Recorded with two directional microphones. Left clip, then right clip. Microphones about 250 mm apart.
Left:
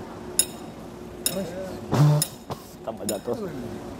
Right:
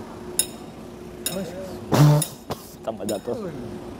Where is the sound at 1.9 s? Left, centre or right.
Right.